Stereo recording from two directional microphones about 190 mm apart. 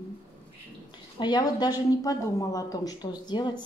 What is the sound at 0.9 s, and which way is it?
A woman's voice, 25° left (ahead or behind).